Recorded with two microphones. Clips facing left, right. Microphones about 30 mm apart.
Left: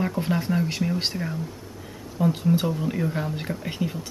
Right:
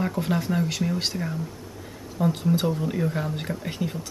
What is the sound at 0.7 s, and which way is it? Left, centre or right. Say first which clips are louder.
Speech: even; centre.